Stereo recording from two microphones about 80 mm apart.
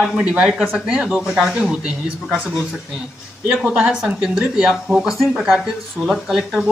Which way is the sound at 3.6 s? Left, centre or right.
Centre.